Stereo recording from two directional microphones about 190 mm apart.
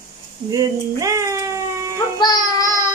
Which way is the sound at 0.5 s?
15° right (ahead or behind).